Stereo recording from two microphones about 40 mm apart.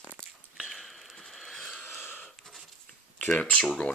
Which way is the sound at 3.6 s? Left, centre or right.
Left.